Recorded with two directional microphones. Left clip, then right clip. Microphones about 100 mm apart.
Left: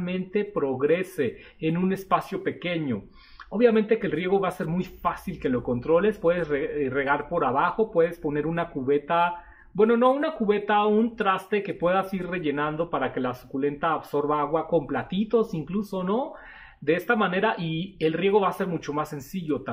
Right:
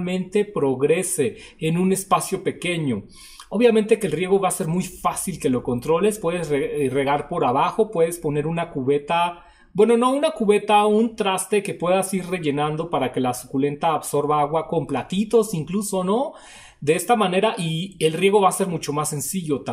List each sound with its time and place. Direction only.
0.0 s speech: 25° right (ahead or behind)